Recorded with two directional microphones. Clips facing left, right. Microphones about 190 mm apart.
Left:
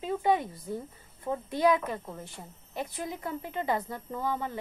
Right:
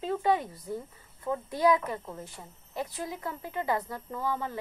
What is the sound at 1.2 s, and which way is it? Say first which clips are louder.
Speech: even; 20° left (ahead or behind).